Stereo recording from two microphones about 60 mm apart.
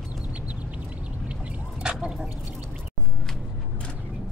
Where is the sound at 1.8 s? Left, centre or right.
Centre.